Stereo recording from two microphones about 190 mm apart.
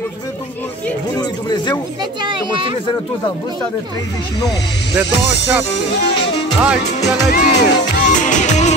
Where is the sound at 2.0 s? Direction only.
25° right (ahead or behind).